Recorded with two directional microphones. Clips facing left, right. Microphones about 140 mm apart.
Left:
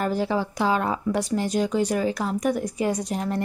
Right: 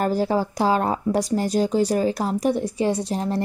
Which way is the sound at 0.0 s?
40° right (ahead or behind).